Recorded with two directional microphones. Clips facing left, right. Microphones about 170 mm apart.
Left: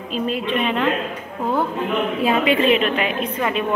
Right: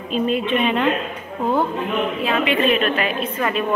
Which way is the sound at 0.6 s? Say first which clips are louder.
Right 1 dB; centre (ahead or behind).